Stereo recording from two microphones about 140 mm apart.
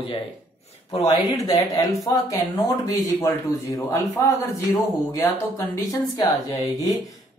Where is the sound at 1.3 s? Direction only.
25° left (ahead or behind).